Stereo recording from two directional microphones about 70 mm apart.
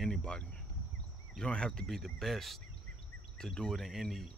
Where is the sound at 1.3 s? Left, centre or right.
Centre.